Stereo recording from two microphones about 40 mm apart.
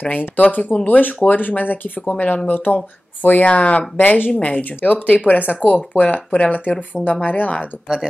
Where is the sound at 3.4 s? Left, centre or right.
Left.